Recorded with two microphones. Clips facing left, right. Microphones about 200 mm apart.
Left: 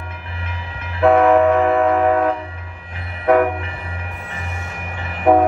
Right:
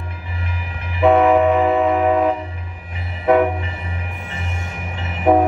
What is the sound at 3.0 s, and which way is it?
Train, centre (ahead or behind).